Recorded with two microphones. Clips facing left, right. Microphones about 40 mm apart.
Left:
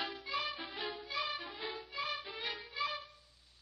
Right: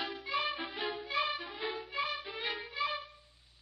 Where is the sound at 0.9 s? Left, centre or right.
Right.